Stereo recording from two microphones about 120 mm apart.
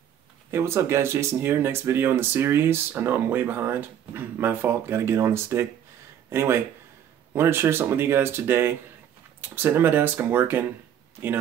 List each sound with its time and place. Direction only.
0.5 s speech: 20° right (ahead or behind)